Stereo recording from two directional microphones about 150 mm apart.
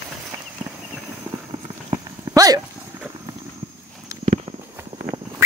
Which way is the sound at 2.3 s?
25° right (ahead or behind).